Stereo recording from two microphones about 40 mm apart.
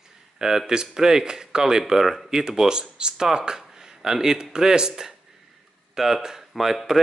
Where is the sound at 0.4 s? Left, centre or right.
Centre.